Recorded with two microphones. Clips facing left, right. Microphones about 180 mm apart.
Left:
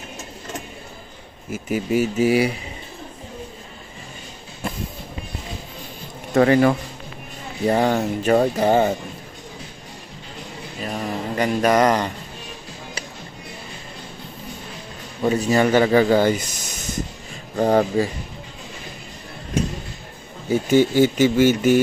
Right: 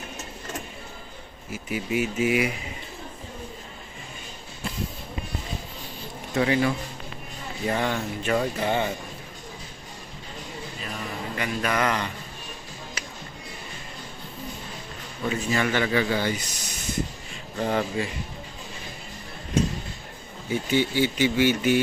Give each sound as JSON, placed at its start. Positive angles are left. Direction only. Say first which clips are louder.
{"t": 1.5, "sound": "speech", "louder": "left 6 dB", "side_deg": 45}
{"t": 6.3, "sound": "speech", "louder": "left 8 dB", "side_deg": 50}
{"t": 7.6, "sound": "speech", "louder": "left 8 dB", "side_deg": 40}
{"t": 10.8, "sound": "mantra", "louder": "left 9 dB", "side_deg": 40}
{"t": 15.2, "sound": "speech", "louder": "left 8 dB", "side_deg": 40}
{"t": 17.6, "sound": "speech", "louder": "left 8 dB", "side_deg": 40}
{"t": 20.4, "sound": "speech", "louder": "left 7 dB", "side_deg": 40}